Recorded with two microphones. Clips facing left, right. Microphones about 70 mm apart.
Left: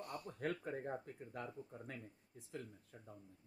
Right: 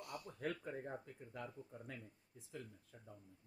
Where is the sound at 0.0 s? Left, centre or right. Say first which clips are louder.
Left 2 dB; left.